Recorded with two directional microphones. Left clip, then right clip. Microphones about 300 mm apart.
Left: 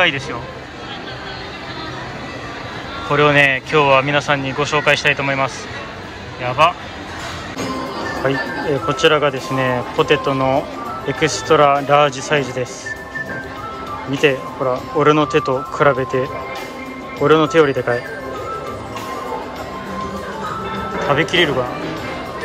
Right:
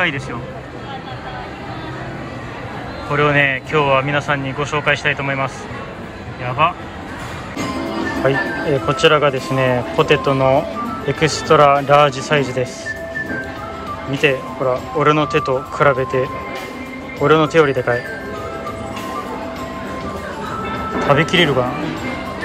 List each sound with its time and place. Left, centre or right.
3.1 s speech: centre
8.2 s speech: centre
14.1 s speech: centre
21.0 s speech: centre